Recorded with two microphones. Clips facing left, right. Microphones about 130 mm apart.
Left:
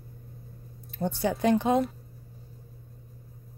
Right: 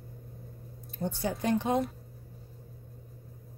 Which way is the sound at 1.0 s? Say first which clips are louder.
Left 5 dB; 80° left.